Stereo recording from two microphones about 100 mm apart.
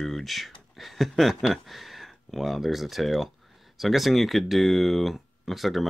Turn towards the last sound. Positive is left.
turn(degrees=0)  # may be behind; listen again after turning